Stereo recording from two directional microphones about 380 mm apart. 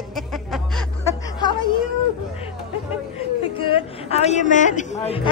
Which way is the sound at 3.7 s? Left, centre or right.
Centre.